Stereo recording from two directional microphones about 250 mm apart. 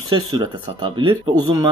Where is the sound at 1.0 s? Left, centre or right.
Centre.